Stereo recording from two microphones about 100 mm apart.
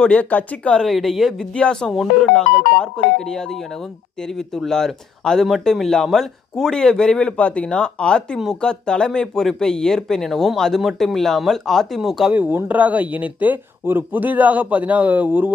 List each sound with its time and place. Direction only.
0.0 s speech: 10° left (ahead or behind)
0.8 s speech: centre (ahead or behind)
12.4 s speech: 20° right (ahead or behind)